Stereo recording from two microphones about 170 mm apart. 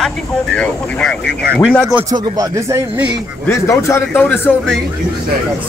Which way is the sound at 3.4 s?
15° left (ahead or behind).